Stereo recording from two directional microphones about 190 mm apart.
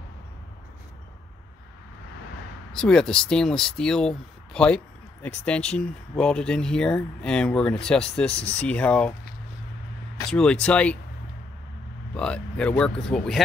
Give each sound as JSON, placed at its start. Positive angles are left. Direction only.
{"t": 2.7, "sound": "speech", "side_deg": 5}
{"t": 10.3, "sound": "speech", "side_deg": 5}
{"t": 12.2, "sound": "speech", "side_deg": 5}